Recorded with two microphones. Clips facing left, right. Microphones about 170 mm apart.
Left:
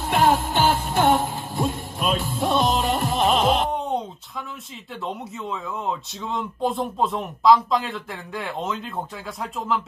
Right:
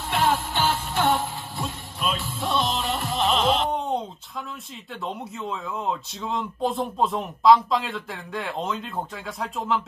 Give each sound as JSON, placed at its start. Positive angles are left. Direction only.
{"t": 0.0, "sound": "music", "side_deg": 45}
{"t": 3.7, "sound": "a sound", "side_deg": 0}
{"t": 5.0, "sound": "speech", "side_deg": 0}